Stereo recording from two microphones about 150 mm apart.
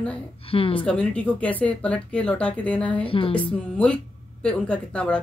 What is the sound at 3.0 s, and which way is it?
Speech, 35° left (ahead or behind).